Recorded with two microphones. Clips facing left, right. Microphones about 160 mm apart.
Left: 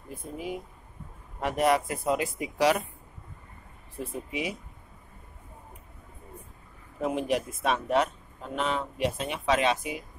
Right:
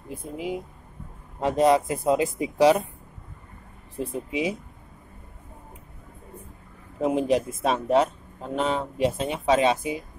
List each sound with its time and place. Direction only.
0.1 s a man's voice: 20° right (ahead or behind)
4.0 s a man's voice: 25° right (ahead or behind)
7.0 s a man's voice: 25° right (ahead or behind)